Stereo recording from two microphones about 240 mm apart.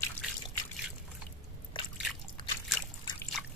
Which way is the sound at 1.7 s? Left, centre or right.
Left.